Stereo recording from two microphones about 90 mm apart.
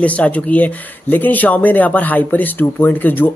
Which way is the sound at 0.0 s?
15° left (ahead or behind).